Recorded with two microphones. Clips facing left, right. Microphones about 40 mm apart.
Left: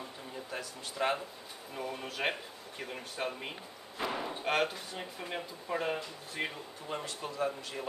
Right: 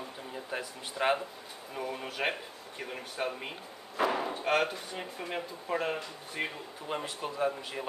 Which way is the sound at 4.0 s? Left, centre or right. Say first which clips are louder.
Right 6 dB; right.